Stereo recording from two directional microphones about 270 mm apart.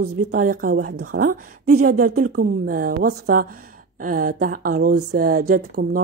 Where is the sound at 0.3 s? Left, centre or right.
Right.